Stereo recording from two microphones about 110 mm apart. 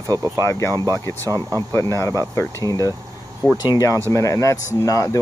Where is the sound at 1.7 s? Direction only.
25° left (ahead or behind).